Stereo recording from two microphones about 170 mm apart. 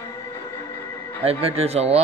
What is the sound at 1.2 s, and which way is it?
Speech, 35° right (ahead or behind).